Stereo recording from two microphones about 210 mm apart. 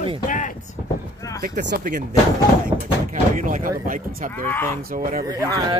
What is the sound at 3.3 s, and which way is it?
Speech, 40° right (ahead or behind).